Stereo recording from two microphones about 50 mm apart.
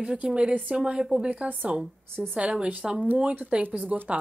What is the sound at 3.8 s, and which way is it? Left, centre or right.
Speech, right.